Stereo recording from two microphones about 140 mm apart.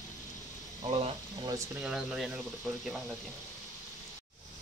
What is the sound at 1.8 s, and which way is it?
Speech, 5° right (ahead or behind).